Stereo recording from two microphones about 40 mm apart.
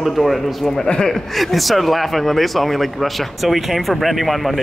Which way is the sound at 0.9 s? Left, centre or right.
Centre.